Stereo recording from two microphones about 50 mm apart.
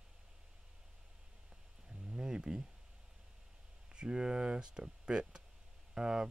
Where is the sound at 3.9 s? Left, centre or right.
Centre.